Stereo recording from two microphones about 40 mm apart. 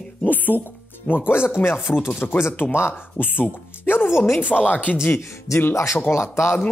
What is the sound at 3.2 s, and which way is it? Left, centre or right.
Speech, left.